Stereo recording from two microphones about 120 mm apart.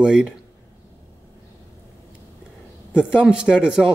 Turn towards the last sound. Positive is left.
turn(degrees=-5)  # may be behind; listen again after turning